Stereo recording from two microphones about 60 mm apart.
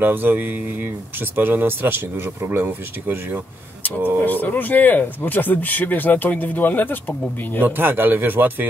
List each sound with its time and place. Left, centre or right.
0.0 s speech: right
4.2 s speech: left
7.6 s speech: right